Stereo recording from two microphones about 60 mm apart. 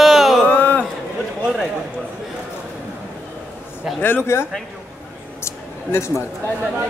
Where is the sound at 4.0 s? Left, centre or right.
Left.